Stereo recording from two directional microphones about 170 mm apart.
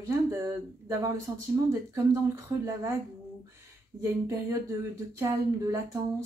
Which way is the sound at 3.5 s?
15° right (ahead or behind).